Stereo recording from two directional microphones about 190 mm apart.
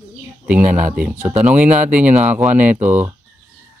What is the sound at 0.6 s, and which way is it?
Speech, 45° right (ahead or behind).